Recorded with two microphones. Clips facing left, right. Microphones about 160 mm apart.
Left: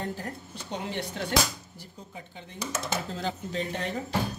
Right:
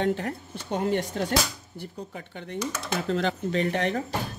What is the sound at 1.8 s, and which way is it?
Speech, 65° right (ahead or behind).